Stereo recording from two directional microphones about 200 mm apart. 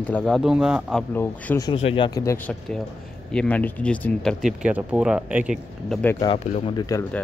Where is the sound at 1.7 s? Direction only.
25° left (ahead or behind); by 5.9 s 5° right (ahead or behind).